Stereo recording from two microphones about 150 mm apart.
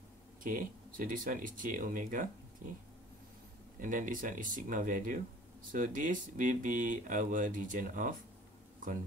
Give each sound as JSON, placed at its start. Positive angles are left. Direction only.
{"t": 0.4, "sound": "speech", "side_deg": -65}
{"t": 3.8, "sound": "speech", "side_deg": -60}